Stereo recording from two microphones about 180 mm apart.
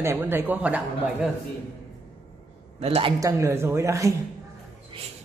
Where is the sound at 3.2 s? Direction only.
15° right (ahead or behind).